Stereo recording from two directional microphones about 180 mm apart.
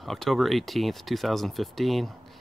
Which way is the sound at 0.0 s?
Centre (ahead or behind).